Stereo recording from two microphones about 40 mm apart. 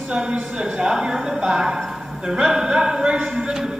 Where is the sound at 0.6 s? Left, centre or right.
Centre.